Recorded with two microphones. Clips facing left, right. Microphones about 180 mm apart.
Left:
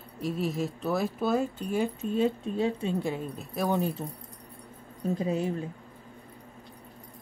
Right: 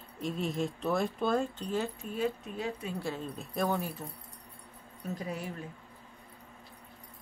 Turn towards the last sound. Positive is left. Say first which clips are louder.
# left 9 dB
turn(degrees=25)  # may be behind; listen again after turning